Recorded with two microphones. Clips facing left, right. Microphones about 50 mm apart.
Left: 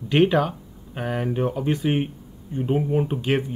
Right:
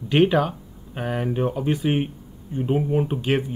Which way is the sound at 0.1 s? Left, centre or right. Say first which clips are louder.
Even; centre.